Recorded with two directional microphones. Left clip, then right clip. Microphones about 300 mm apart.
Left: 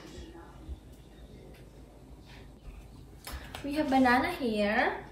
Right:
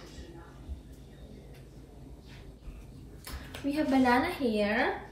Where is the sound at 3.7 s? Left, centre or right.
Centre.